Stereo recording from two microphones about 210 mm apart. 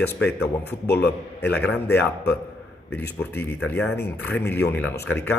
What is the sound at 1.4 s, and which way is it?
Speech, 5° left (ahead or behind).